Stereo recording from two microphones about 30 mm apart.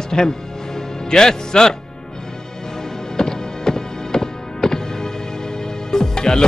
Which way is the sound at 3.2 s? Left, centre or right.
Left.